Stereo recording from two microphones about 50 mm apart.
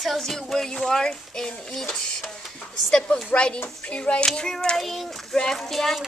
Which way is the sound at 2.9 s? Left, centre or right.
Centre.